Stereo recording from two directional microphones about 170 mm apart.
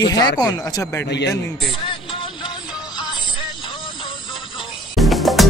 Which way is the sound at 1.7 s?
30° left (ahead or behind).